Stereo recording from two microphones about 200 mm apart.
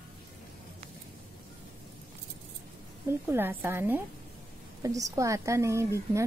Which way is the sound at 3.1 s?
10° right (ahead or behind).